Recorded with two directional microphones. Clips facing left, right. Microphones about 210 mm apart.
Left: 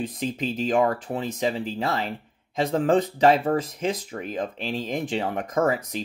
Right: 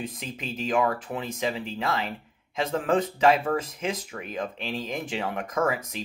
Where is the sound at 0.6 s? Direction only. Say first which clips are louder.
Left 2 dB; 35° left (ahead or behind).